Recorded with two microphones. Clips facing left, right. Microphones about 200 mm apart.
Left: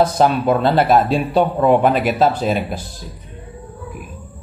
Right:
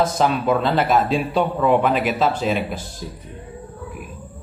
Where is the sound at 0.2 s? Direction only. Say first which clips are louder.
Left 4 dB; 45° left (ahead or behind).